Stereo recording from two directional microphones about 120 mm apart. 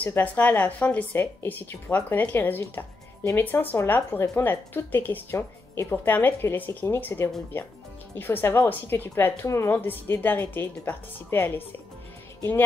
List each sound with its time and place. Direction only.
0.0 s speech: 15° left (ahead or behind)